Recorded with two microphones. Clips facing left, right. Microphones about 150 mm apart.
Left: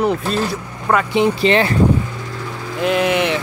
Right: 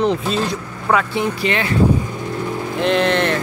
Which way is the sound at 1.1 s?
25° left (ahead or behind).